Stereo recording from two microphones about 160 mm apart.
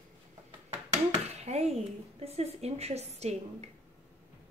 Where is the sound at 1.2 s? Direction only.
40° right (ahead or behind).